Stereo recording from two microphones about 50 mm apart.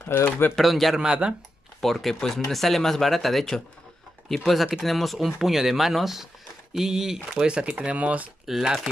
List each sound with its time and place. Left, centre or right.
0.1 s speech: left
0.6 s speech: centre
7.3 s speech: centre
8.5 s speech: centre